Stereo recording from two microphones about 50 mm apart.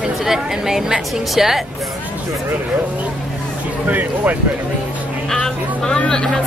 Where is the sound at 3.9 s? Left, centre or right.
Right.